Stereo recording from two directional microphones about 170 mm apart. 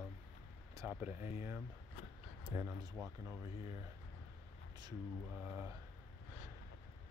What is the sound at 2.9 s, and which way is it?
Speech, centre (ahead or behind).